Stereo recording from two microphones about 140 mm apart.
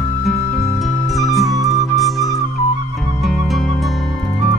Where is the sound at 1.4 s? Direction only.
25° right (ahead or behind).